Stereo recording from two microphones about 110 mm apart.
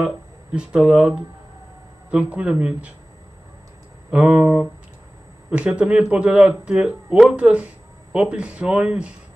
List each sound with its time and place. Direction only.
0.0 s speech: 10° right (ahead or behind)
4.1 s speech: 10° right (ahead or behind)